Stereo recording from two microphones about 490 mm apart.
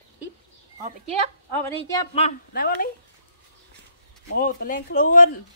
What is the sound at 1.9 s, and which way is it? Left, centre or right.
Speech, centre.